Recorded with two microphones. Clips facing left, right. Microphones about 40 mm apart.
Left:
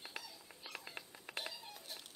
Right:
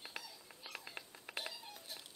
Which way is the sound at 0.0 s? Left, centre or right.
Centre.